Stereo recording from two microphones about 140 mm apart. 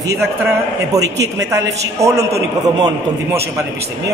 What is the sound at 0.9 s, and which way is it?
A man's voice, 25° right (ahead or behind).